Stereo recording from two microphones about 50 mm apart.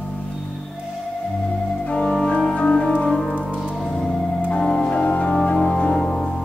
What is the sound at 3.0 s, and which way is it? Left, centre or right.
Music, centre.